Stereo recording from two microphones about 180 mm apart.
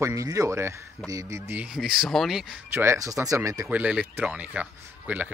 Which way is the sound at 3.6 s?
5° right (ahead or behind).